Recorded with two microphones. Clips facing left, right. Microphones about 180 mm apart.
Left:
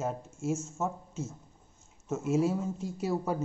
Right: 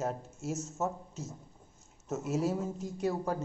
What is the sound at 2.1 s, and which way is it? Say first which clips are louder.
Speech: left 3 dB; centre (ahead or behind).